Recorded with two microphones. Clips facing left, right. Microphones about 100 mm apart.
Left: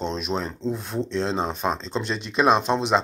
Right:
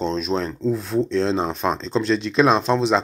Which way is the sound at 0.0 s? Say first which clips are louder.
Right 4 dB; 15° left (ahead or behind).